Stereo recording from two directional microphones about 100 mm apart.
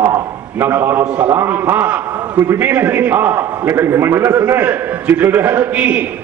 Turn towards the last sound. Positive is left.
turn(degrees=-15)  # may be behind; listen again after turning